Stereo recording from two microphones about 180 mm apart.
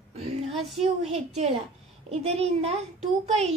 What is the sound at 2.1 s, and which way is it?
A woman's voice, 35° right (ahead or behind).